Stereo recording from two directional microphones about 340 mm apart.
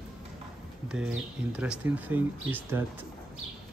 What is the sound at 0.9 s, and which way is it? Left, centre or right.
Speech, centre.